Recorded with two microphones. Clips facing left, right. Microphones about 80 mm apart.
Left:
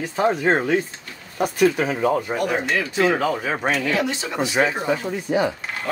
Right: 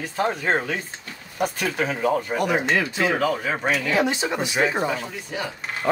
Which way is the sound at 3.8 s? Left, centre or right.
Right.